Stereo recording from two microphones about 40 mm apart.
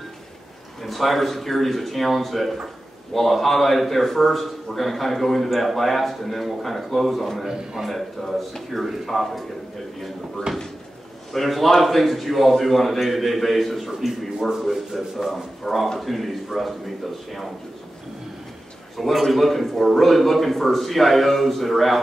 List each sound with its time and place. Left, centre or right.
0.8 s a man's voice: centre
7.4 s speech: centre
7.9 s a man's voice: centre
10.5 s speech: centre
11.3 s a man's voice: centre
18.9 s a man's voice: centre